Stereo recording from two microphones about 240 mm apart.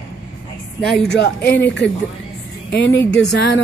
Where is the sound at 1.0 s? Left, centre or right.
Left.